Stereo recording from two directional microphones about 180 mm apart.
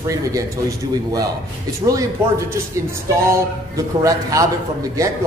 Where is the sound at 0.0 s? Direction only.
20° right (ahead or behind).